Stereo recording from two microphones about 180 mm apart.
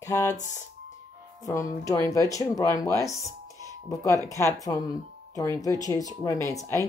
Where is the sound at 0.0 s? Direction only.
15° left (ahead or behind).